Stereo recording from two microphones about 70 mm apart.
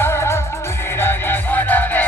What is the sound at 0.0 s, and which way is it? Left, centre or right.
Music, left.